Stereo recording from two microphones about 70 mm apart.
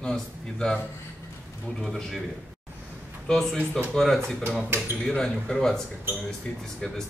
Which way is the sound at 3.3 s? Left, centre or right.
Centre.